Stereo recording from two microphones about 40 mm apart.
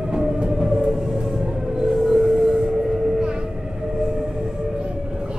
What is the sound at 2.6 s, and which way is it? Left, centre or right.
Vehicle, centre.